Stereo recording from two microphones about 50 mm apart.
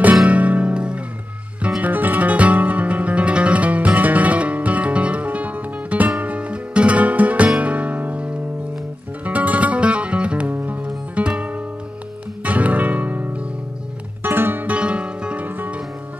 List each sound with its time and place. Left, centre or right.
0.0 s music: right
1.8 s music: right
14.2 s music: right
14.7 s music: right
15.4 s music: right